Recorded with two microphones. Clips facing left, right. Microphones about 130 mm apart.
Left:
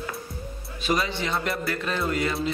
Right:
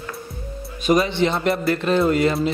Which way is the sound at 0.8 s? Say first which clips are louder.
Right 8 dB; 20° right (ahead or behind).